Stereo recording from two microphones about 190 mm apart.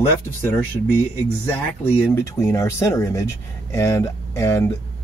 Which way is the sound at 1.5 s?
10° left (ahead or behind).